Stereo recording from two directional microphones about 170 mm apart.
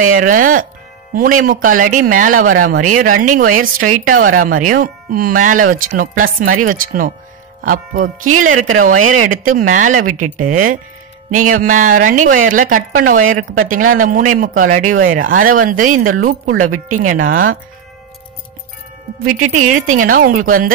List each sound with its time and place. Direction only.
0.1 s a woman's voice: 50° right (ahead or behind)
19.3 s speech: 50° right (ahead or behind)